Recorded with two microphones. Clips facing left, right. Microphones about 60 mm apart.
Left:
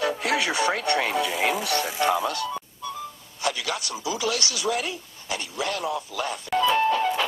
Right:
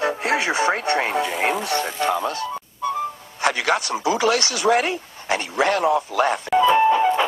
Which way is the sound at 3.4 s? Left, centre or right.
Right.